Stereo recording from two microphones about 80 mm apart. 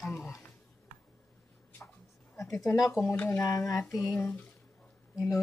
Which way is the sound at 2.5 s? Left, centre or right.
Left.